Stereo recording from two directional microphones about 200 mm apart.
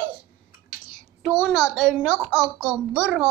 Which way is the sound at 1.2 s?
Centre (ahead or behind).